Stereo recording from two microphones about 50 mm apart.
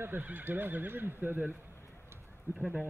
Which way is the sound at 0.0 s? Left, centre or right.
Right.